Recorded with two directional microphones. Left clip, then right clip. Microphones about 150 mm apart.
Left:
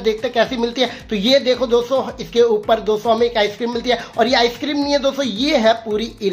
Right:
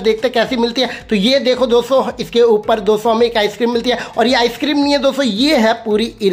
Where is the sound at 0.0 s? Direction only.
25° right (ahead or behind).